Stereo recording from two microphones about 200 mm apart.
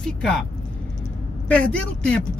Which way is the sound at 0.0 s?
5° left (ahead or behind).